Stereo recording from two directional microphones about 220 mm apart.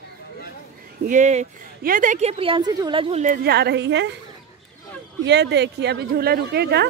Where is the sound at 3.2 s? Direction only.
40° right (ahead or behind).